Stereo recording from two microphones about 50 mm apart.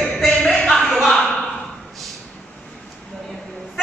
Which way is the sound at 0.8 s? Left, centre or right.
Centre.